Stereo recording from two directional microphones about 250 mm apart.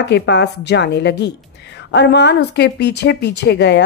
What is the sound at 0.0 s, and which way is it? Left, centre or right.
A woman's voice, left.